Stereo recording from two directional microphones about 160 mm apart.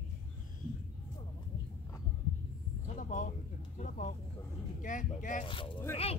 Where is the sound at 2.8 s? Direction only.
50° left (ahead or behind).